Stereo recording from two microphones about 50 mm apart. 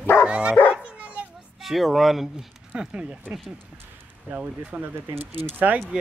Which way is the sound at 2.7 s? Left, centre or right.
Right.